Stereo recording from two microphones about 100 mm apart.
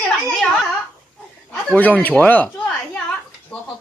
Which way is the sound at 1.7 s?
15° left (ahead or behind).